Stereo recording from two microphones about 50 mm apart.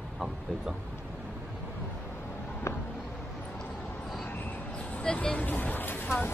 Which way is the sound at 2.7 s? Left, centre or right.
Left.